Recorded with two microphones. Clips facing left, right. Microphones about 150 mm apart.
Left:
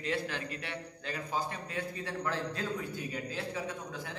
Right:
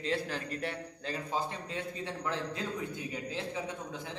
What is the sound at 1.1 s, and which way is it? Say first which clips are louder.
A man's voice: right 1 dB; 25° right (ahead or behind).